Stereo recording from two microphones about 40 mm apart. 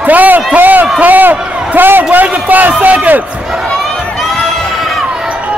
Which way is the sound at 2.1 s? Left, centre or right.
Right.